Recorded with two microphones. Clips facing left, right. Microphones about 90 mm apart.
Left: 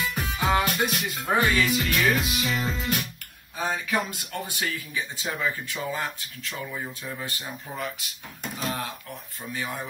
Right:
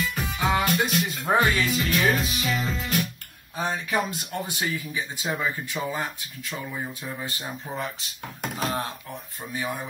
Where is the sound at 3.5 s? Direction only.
20° right (ahead or behind).